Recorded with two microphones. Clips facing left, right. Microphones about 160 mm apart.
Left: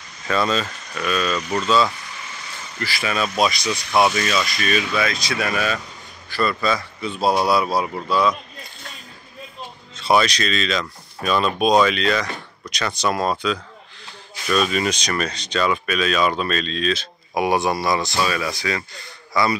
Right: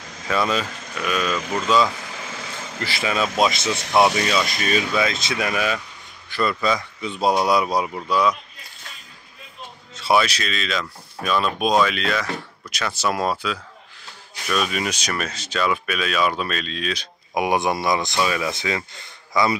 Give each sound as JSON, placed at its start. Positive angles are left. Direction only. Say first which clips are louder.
{"t": 0.3, "sound": "speech", "louder": "left 1 dB", "side_deg": -10}
{"t": 2.0, "sound": "vehicle", "louder": "right 4 dB", "side_deg": -90}
{"t": 2.8, "sound": "speech", "louder": "even", "side_deg": -25}
{"t": 9.9, "sound": "speech", "louder": "left 1 dB", "side_deg": -5}